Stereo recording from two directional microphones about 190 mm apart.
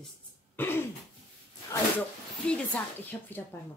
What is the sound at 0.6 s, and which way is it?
Throat clearing, 10° left (ahead or behind).